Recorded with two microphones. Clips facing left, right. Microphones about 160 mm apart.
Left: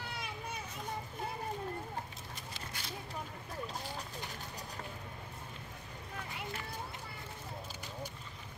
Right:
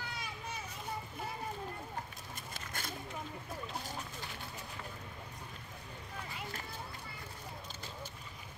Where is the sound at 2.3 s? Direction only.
50° right (ahead or behind).